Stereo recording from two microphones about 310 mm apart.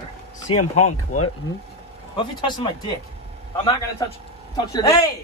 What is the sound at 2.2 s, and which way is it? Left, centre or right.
Speech, centre.